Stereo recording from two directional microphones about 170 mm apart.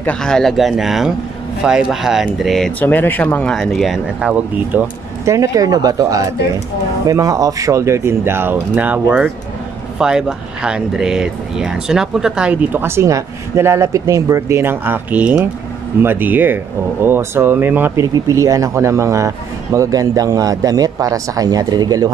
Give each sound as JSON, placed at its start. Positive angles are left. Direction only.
{"t": 0.0, "sound": "speech", "side_deg": 5}